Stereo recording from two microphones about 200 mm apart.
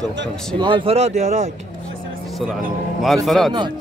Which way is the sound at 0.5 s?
25° right (ahead or behind).